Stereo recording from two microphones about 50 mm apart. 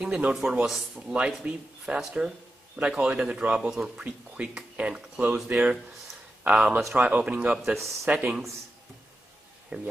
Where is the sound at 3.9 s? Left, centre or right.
Right.